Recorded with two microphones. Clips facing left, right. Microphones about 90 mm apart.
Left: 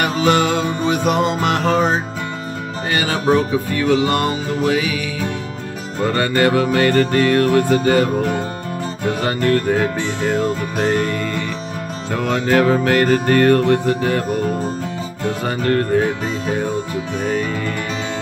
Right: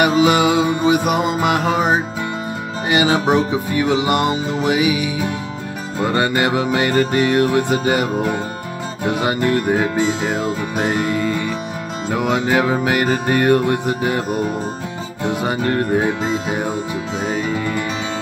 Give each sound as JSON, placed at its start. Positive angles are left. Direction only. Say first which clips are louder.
{"t": 0.0, "sound": "music", "louder": "right 2 dB", "side_deg": -10}